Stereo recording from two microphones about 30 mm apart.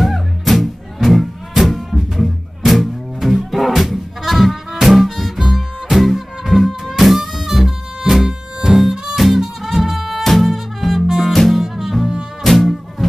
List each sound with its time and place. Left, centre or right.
0.0 s music: centre
11.1 s music: centre
12.4 s music: centre